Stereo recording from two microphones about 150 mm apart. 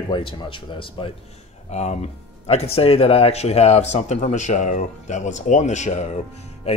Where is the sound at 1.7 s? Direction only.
50° left (ahead or behind).